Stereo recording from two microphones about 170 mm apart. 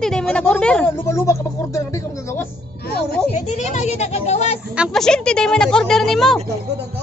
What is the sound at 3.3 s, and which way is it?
Speech, 45° left (ahead or behind).